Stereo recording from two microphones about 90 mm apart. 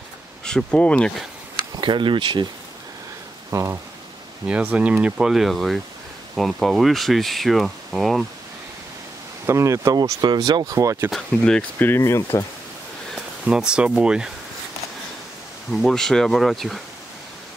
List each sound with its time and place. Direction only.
0.5 s speech: 10° left (ahead or behind)
1.8 s speech: 60° right (ahead or behind)
3.4 s speech: 35° right (ahead or behind)
4.5 s speech: 15° right (ahead or behind); by 8.3 s centre (ahead or behind)
9.5 s speech: 30° right (ahead or behind)
9.9 s speech: 50° right (ahead or behind)
10.7 s speech: 35° right (ahead or behind)
11.1 s speech: 5° left (ahead or behind)
12.0 s speech: 35° left (ahead or behind)
13.1 s speech: 5° right (ahead or behind)
15.7 s speech: 5° left (ahead or behind)